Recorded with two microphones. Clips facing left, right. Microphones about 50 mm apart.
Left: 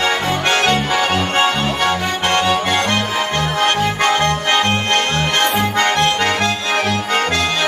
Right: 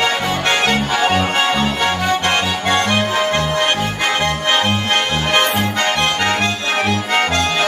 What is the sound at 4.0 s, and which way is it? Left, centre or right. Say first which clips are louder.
Music: left 2 dB; centre.